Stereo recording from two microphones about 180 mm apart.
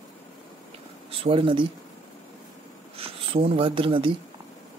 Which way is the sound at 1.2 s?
30° right (ahead or behind).